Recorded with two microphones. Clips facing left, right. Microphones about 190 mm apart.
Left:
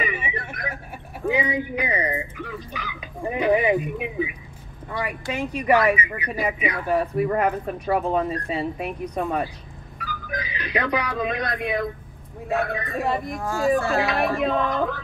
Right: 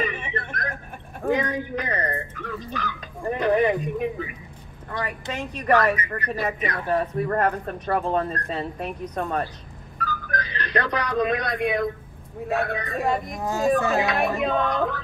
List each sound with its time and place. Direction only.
0.0 s a sound: 10° left (ahead or behind)
1.3 s speech: 10° left (ahead or behind)
5.3 s speech: 10° left (ahead or behind)
13.4 s speech: 20° right (ahead or behind)
14.0 s speech: centre (ahead or behind)